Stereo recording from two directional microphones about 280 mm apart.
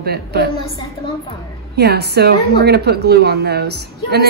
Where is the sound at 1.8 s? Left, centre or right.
Right.